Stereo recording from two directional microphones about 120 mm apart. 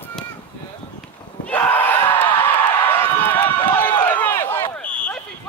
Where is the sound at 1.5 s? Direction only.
15° left (ahead or behind).